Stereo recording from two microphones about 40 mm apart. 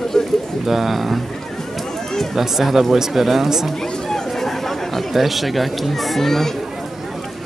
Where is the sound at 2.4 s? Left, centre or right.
Centre.